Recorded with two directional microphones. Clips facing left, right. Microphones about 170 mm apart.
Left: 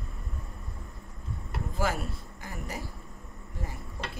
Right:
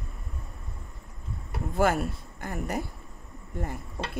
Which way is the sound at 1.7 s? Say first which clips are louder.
Right 7 dB; 55° right (ahead or behind).